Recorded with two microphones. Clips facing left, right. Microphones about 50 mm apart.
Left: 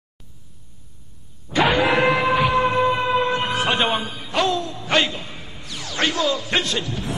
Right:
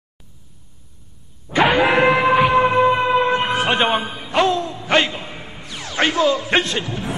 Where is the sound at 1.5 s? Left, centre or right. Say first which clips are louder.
Right 3 dB; centre.